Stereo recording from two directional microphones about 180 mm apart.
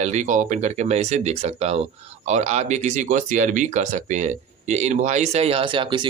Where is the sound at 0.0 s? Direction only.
40° right (ahead or behind).